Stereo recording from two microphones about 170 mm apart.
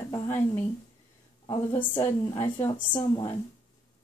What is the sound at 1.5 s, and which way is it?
A woman's voice, 30° left (ahead or behind).